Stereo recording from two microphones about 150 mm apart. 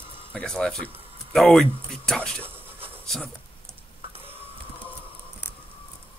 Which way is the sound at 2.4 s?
15° right (ahead or behind).